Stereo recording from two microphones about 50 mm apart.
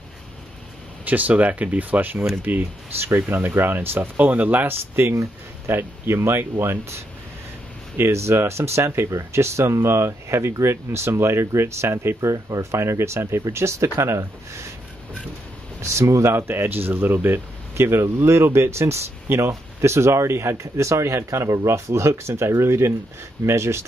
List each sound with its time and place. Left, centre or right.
1.0 s speech: right
3.0 s speech: right
4.2 s speech: right
5.0 s speech: right
5.7 s speech: right
8.0 s speech: right
12.2 s speech: right
15.8 s speech: right
16.3 s speech: right